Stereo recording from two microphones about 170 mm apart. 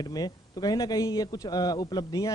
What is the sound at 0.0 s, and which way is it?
A man's voice, 25° left (ahead or behind).